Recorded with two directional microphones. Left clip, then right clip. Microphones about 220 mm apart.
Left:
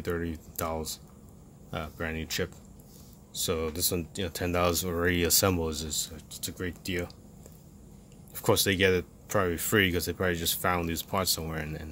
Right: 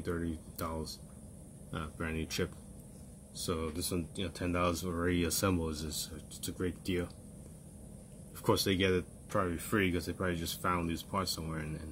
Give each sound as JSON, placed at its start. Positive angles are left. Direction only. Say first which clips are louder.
{"t": 0.0, "sound": "speech", "louder": "left 5 dB", "side_deg": 35}
{"t": 3.4, "sound": "speech", "louder": "left 7 dB", "side_deg": 35}
{"t": 8.4, "sound": "speech", "louder": "left 6 dB", "side_deg": 35}